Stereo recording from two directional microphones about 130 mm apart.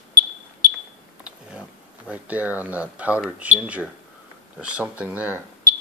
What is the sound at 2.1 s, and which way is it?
Speech, 10° right (ahead or behind).